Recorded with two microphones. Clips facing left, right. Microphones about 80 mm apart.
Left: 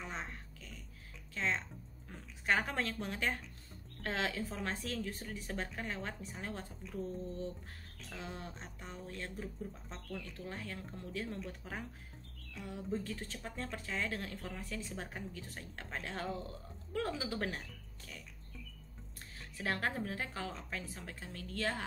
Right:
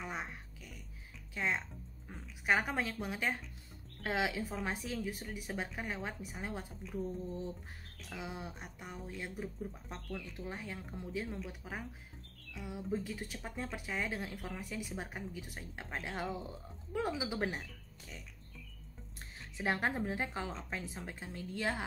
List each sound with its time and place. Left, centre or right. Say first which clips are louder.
0.0 s a sound: right 2 dB; centre
1.3 s speech: right 1 dB; centre
19.5 s a woman's voice: right 2 dB; right